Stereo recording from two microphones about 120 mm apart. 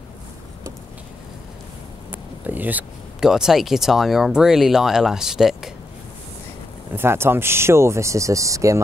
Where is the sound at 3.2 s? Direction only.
5° right (ahead or behind).